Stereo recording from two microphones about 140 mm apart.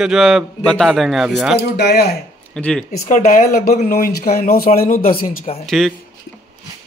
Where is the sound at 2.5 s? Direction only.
10° left (ahead or behind).